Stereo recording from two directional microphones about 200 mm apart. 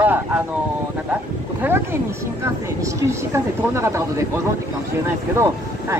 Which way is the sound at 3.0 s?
15° right (ahead or behind).